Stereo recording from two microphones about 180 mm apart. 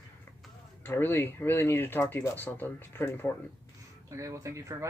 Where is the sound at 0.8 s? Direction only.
10° left (ahead or behind).